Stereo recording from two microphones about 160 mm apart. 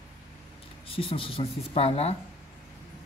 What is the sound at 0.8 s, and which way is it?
Speech, 35° left (ahead or behind).